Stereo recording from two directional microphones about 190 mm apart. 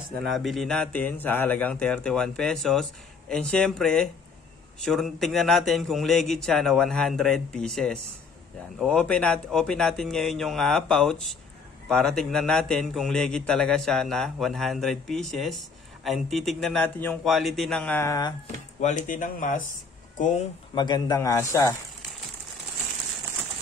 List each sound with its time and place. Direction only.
0.3 s speech: centre (ahead or behind); by 18.3 s 15° left (ahead or behind)
18.8 s speech: 40° left (ahead or behind)
20.7 s speech: 20° left (ahead or behind)